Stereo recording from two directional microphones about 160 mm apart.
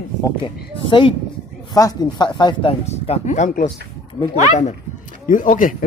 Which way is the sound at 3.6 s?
35° left (ahead or behind).